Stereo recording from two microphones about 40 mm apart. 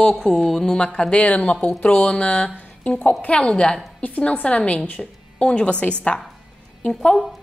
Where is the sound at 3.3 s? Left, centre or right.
Left.